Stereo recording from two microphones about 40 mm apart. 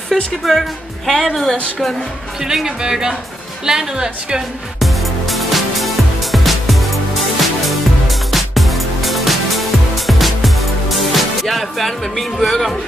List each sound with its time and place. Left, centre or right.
0.1 s music: centre
0.5 s speech: centre
2.4 s speech: centre
4.7 s music: centre